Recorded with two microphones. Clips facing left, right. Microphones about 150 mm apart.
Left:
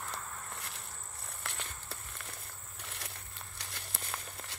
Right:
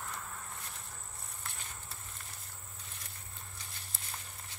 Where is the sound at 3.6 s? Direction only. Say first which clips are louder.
Left 5 dB; 75° left (ahead or behind).